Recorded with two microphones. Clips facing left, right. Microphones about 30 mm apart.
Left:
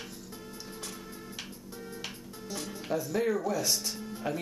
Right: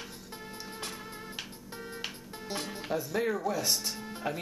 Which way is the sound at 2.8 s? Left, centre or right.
Centre.